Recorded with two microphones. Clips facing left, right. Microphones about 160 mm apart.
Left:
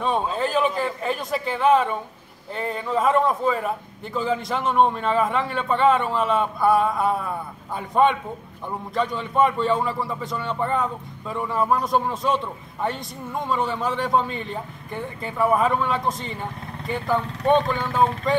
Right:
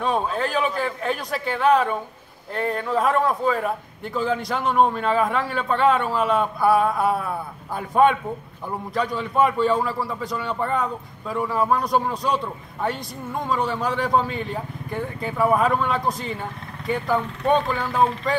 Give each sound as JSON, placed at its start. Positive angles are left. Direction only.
{"t": 0.0, "sound": "a man's voice", "side_deg": 0}